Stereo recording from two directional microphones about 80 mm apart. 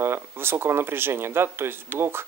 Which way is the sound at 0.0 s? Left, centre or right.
Right.